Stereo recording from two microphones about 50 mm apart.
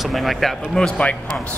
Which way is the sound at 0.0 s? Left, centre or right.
Centre.